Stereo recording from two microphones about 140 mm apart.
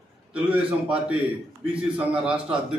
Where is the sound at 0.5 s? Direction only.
10° right (ahead or behind).